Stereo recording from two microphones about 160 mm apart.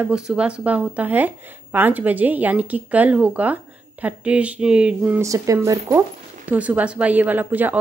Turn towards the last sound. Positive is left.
turn(degrees=-10)  # may be behind; listen again after turning